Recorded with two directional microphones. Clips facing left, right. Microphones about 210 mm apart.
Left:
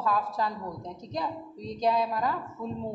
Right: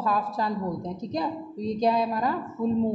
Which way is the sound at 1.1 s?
5° right (ahead or behind).